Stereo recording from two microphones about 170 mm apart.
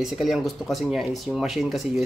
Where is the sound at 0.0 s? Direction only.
Centre (ahead or behind).